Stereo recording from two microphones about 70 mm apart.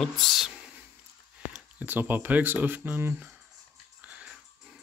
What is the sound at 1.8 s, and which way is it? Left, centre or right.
Speech, right.